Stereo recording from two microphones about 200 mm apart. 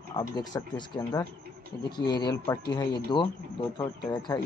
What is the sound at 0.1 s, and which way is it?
Speech, 20° left (ahead or behind).